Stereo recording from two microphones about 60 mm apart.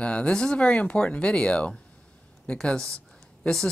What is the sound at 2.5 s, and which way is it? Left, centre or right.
Speech, centre.